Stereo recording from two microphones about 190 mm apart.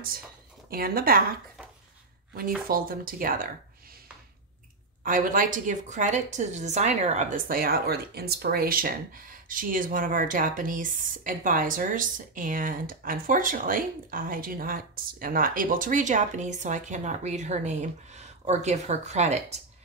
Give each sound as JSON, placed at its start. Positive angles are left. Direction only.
{"t": 0.7, "sound": "a woman's voice", "side_deg": -50}
{"t": 2.7, "sound": "a woman's voice", "side_deg": -50}
{"t": 5.0, "sound": "a woman's voice", "side_deg": -45}